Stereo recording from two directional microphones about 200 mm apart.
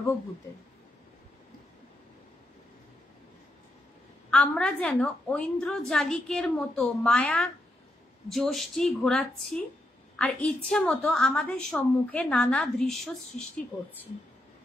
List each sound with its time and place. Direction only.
4.3 s a woman's voice: 5° left (ahead or behind)